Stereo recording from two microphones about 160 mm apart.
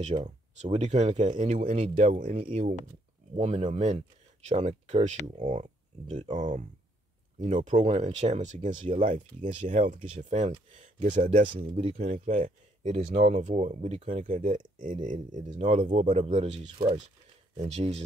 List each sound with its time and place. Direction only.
0.0 s speech: 45° right (ahead or behind)
12.1 s a man's voice: 50° right (ahead or behind)
13.5 s speech: 40° right (ahead or behind)